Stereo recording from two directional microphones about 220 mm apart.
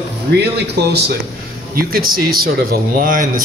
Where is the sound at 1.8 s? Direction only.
40° right (ahead or behind).